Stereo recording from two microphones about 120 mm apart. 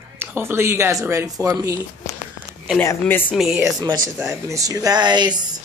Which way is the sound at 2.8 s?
20° left (ahead or behind).